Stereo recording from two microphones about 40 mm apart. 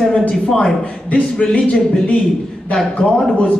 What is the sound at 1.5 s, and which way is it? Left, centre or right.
A man's voice, centre.